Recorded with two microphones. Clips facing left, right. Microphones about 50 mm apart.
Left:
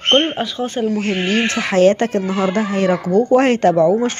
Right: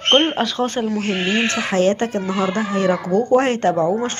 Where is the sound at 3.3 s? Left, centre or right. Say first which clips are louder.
Left 4 dB; left.